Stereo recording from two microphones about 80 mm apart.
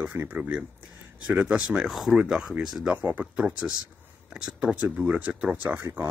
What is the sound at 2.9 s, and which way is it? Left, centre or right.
Speech, right.